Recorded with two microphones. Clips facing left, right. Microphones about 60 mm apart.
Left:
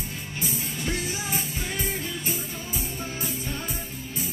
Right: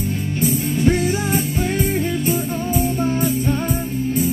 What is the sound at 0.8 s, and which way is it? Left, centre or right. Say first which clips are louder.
Music: right 12 dB; right.